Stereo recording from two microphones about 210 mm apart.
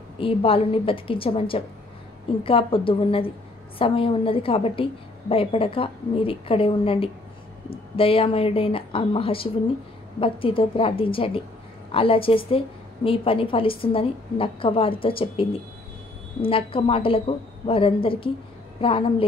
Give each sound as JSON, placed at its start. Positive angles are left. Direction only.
{"t": 0.2, "sound": "a woman's voice", "side_deg": 25}